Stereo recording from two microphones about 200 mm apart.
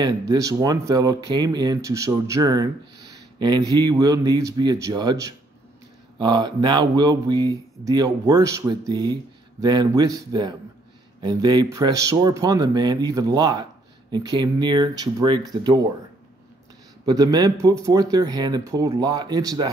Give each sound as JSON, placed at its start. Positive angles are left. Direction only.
{"t": 0.3, "sound": "speech", "side_deg": -20}
{"t": 17.0, "sound": "speech", "side_deg": -20}